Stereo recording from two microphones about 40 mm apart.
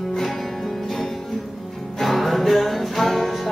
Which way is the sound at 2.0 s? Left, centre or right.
Centre.